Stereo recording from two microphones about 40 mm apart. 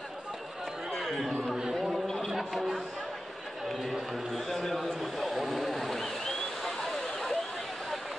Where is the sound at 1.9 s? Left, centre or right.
Centre.